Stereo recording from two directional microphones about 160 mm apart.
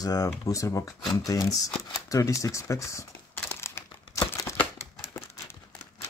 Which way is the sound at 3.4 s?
15° left (ahead or behind).